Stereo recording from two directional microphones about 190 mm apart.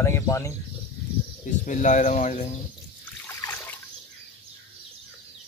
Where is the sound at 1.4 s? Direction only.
40° left (ahead or behind).